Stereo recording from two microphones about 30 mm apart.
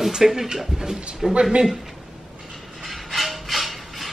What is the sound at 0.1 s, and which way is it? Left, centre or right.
Speech, centre.